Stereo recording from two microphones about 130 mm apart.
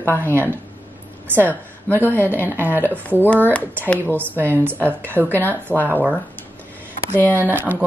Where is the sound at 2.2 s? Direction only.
15° right (ahead or behind).